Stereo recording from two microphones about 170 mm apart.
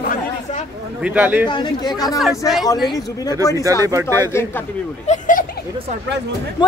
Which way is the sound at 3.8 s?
20° right (ahead or behind).